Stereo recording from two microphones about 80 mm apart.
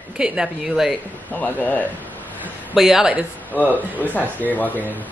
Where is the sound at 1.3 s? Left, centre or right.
Left.